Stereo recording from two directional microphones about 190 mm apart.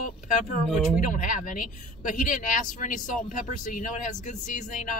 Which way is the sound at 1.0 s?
45° left (ahead or behind).